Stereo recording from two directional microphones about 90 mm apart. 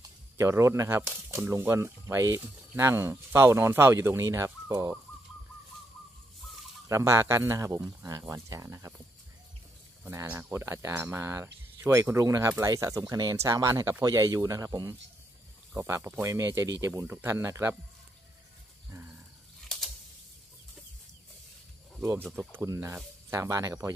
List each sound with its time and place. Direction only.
0.4 s speech: 35° right (ahead or behind)
6.9 s speech: 35° right (ahead or behind)
10.5 s speech: 30° right (ahead or behind)
15.7 s speech: 30° right (ahead or behind)
16.3 s speech: 35° right (ahead or behind)
18.9 s a sound: 20° right (ahead or behind)
19.7 s a sound: 5° left (ahead or behind)
22.0 s speech: 25° right (ahead or behind)
22.7 s speech: 35° right (ahead or behind)